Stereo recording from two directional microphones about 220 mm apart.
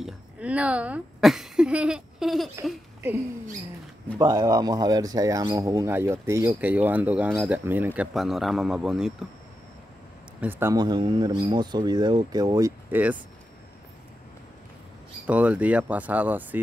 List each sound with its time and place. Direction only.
0.0 s speech: 5° right (ahead or behind)
4.2 s speech: 15° right (ahead or behind)
10.4 s speech: 10° right (ahead or behind)
15.2 s speech: 5° right (ahead or behind)